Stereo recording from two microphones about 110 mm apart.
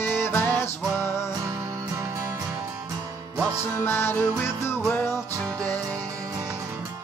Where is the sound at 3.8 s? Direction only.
20° left (ahead or behind).